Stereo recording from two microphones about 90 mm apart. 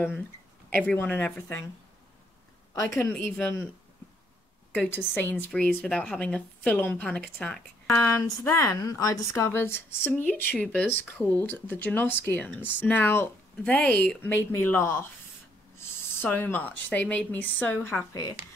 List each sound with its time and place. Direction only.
0.8 s a woman's voice: 15° left (ahead or behind)
2.7 s a woman's voice: 30° left (ahead or behind)
3.1 s a woman's voice: 15° left (ahead or behind)
4.7 s a woman's voice: 20° left (ahead or behind)
7.9 s a woman's voice: 25° left (ahead or behind)
8.5 s a woman's voice: 40° left (ahead or behind); by 13.7 s 25° left (ahead or behind)
13.7 s a woman's voice: 15° left (ahead or behind)
14.2 s a woman's voice: 25° left (ahead or behind)
16.2 s a woman's voice: 25° left (ahead or behind)